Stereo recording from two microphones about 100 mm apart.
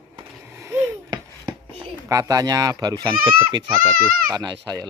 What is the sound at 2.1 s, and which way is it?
Speech, 35° right (ahead or behind).